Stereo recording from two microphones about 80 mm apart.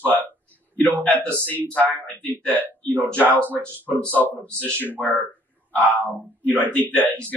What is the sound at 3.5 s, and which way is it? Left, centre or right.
Speech, right.